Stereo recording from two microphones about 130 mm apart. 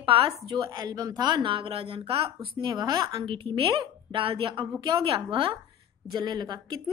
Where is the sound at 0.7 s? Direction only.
30° right (ahead or behind); by 2.7 s 50° right (ahead or behind).